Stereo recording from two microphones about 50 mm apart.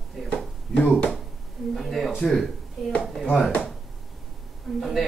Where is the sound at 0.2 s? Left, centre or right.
Centre.